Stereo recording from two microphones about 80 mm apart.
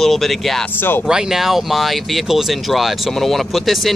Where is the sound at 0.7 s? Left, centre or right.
Left.